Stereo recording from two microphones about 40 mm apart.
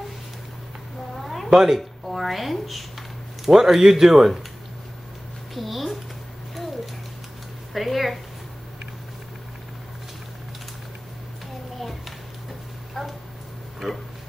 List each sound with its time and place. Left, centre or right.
1.1 s cat: centre
1.8 s a woman's voice: centre
5.5 s speech: centre
7.7 s a woman's voice: centre
13.8 s speech: centre